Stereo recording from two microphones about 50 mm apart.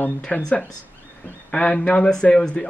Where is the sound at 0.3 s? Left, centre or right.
Left.